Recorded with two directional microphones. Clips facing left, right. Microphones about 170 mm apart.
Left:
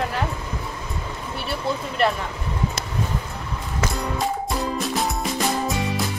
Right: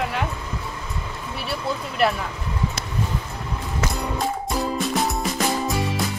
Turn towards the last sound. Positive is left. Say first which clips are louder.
# even
turn(degrees=0)  # may be behind; listen again after turning